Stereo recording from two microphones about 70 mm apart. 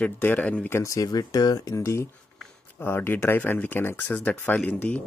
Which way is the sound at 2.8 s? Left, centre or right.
Left.